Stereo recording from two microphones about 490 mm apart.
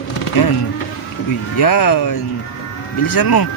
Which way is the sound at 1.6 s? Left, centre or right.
Left.